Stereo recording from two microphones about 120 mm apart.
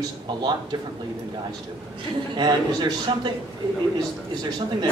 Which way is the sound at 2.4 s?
40° right (ahead or behind).